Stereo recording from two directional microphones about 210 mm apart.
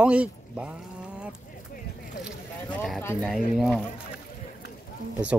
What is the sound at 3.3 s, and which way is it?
Speech, centre (ahead or behind).